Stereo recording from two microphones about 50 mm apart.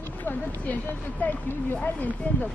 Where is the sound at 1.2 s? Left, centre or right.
Left.